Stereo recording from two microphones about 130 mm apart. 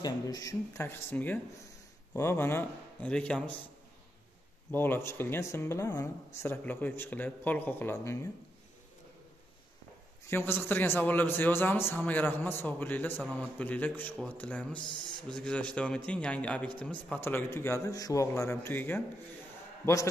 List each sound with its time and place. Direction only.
0.0 s a man's voice: 30° left (ahead or behind); by 3.5 s 10° left (ahead or behind)
4.6 s speech: 15° left (ahead or behind)
6.4 s a man's voice: 15° left (ahead or behind)
10.2 s a man's voice: 15° left (ahead or behind)